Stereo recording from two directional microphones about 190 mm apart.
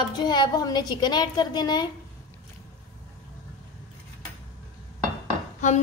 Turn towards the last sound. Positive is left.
turn(degrees=40)  # may be behind; listen again after turning